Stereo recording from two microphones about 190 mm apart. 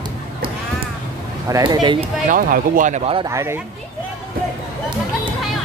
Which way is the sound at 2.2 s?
45° right (ahead or behind).